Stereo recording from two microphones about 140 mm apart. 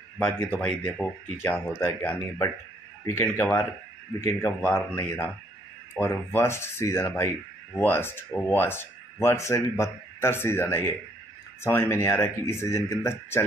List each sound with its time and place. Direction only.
0.2 s speech: 5° left (ahead or behind)